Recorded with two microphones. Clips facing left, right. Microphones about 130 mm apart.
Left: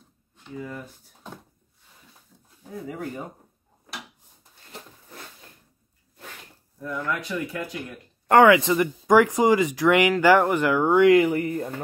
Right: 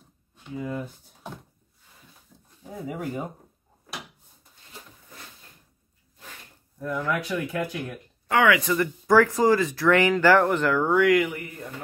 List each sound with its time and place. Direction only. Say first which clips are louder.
0.4 s speech: right 4 dB; 15° right (ahead or behind)
6.8 s speech: right 2 dB; 5° right (ahead or behind)
8.4 s speech: left 5 dB; 25° left (ahead or behind)